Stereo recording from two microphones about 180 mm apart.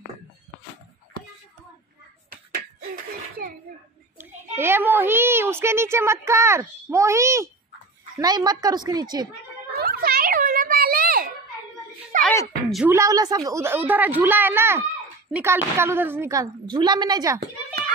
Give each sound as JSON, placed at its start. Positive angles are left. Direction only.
{"t": 4.2, "sound": "a child's voice", "side_deg": -10}
{"t": 9.8, "sound": "children playing", "side_deg": -55}
{"t": 12.2, "sound": "a sound", "side_deg": 10}
{"t": 12.9, "sound": "a child's voice", "side_deg": -20}
{"t": 17.4, "sound": "children playing", "side_deg": -55}